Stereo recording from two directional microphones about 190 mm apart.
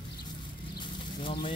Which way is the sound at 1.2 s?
25° left (ahead or behind).